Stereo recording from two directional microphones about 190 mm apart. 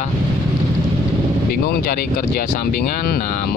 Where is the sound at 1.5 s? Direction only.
50° left (ahead or behind).